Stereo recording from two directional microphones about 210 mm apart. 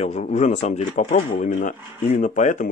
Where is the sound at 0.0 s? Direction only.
30° left (ahead or behind).